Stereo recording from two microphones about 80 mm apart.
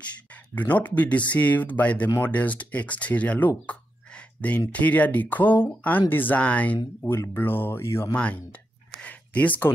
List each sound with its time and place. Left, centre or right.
0.6 s speech: left
7.0 s speech: left
8.1 s speech: centre